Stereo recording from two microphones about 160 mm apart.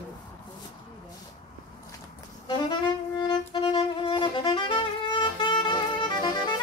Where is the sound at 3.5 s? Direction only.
35° left (ahead or behind).